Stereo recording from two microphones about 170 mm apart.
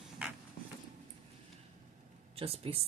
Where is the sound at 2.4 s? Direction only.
35° right (ahead or behind).